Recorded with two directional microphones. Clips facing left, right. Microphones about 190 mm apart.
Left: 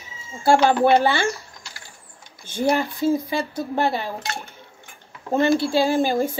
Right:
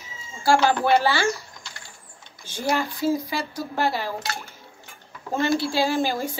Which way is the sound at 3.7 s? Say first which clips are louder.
Left 2 dB; 20° left (ahead or behind).